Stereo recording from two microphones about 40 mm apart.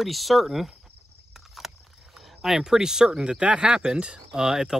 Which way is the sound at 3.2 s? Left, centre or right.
Right.